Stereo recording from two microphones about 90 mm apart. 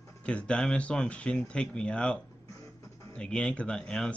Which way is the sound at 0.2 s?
15° left (ahead or behind).